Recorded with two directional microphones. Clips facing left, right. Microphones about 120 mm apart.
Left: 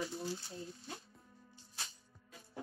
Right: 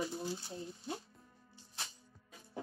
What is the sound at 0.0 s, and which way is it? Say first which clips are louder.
Speech: right 2 dB; 20° right (ahead or behind).